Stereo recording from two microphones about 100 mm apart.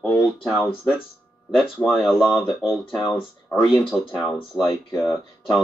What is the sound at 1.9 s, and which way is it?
Speech, 5° right (ahead or behind).